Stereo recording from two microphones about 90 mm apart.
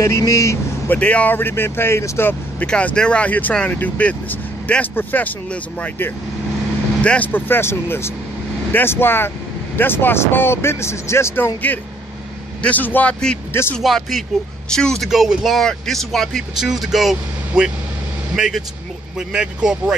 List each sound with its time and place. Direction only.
0.0 s speech: 35° left (ahead or behind)
0.8 s speech: 15° left (ahead or behind)
2.6 s speech: 10° left (ahead or behind)
13.7 s speech: centre (ahead or behind)
15.0 s speech: 5° right (ahead or behind)